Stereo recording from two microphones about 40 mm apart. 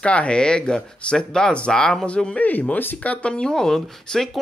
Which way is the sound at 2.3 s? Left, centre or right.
Left.